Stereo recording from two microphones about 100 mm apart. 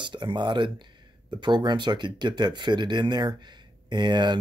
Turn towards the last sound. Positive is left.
turn(degrees=-50)  # may be behind; listen again after turning